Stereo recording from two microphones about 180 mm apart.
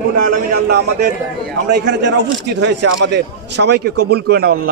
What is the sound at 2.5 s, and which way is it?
A man's voice, 75° right (ahead or behind).